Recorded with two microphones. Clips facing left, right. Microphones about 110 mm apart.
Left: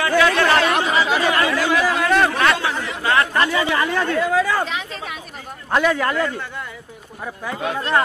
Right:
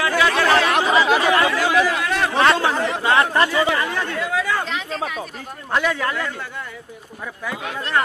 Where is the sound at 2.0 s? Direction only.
50° left (ahead or behind).